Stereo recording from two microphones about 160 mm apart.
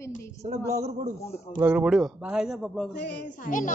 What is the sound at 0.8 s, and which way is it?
Speech, 45° right (ahead or behind).